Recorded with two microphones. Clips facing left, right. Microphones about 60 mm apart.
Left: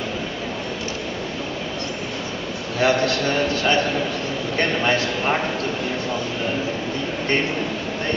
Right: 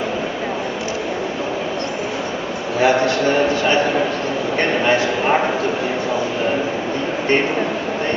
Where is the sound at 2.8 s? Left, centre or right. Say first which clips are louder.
Right 4 dB; centre.